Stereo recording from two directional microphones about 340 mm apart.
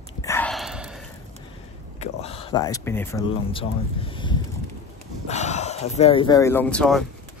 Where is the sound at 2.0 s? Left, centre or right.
Centre.